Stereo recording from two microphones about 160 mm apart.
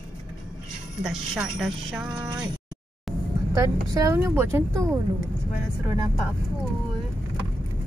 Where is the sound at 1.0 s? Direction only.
5° right (ahead or behind).